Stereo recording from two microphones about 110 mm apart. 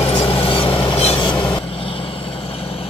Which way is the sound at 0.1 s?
50° left (ahead or behind).